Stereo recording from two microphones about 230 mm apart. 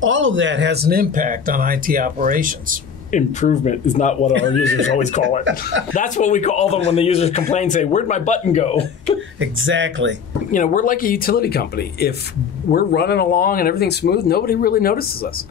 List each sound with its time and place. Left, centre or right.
0.0 s speech: right
3.1 s speech: left
4.3 s speech: right
5.9 s speech: left
9.4 s speech: right
10.5 s speech: left